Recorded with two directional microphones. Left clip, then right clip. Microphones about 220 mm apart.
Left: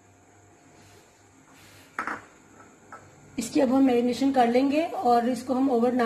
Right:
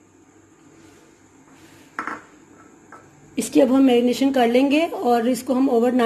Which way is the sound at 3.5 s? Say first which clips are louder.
Right 6 dB; 45° right (ahead or behind).